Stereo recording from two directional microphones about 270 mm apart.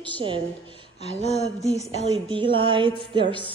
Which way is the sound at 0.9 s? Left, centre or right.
Left.